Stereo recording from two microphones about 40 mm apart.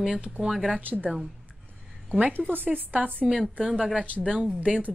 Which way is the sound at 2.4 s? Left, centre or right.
Right.